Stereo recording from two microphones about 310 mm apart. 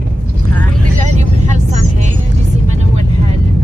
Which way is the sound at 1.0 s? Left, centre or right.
Right.